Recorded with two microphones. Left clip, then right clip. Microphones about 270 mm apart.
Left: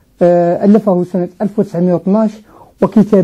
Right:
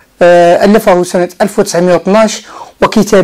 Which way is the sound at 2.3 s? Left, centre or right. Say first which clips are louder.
Right 12 dB; centre.